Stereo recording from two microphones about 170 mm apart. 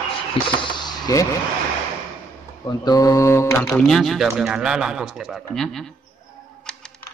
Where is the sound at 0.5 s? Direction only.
30° left (ahead or behind).